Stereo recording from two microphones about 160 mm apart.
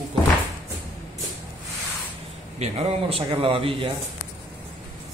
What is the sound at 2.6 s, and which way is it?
A man's voice, 35° right (ahead or behind).